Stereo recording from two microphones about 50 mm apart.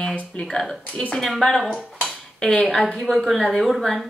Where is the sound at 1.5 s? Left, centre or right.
Centre.